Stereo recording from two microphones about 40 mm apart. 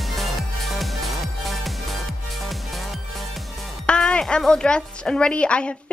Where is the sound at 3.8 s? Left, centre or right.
Left.